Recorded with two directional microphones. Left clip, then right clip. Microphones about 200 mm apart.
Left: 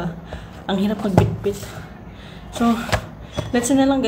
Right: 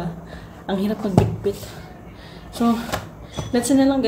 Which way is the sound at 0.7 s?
5° left (ahead or behind).